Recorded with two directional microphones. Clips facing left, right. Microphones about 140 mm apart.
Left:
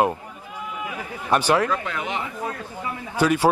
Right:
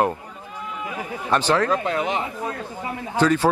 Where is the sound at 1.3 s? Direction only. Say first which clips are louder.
Left 1 dB; 15° left (ahead or behind).